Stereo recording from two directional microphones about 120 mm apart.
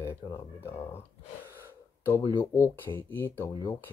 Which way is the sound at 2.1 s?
25° left (ahead or behind).